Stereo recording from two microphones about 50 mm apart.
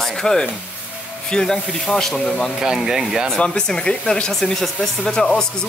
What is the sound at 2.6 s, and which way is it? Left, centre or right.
Speech, centre.